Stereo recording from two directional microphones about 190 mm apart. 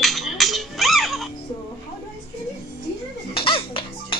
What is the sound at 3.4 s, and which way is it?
Music, 30° left (ahead or behind).